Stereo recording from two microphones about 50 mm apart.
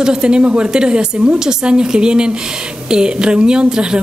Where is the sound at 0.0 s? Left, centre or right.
Centre.